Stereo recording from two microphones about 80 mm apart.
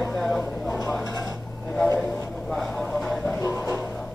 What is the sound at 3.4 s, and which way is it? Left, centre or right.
Music, left.